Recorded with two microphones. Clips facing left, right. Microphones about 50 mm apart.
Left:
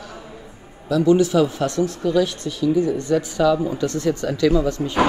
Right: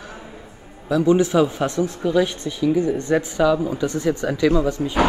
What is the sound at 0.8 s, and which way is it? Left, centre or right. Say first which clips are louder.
Speech: left 1 dB; right.